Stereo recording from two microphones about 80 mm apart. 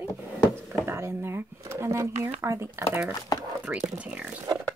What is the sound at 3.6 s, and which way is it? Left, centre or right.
Speech, centre.